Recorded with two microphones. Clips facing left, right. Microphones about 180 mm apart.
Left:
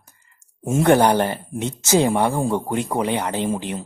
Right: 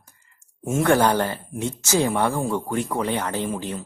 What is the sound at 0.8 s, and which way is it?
Speech, 20° left (ahead or behind).